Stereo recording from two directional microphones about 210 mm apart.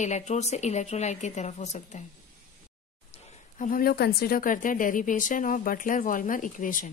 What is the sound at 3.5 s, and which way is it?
Speech, 40° left (ahead or behind).